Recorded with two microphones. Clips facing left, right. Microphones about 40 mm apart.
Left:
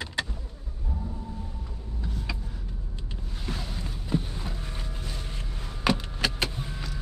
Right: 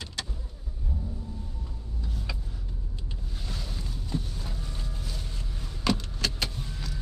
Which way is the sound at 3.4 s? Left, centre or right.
Left.